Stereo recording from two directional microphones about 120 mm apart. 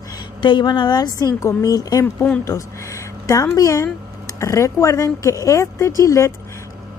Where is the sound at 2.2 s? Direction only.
20° left (ahead or behind).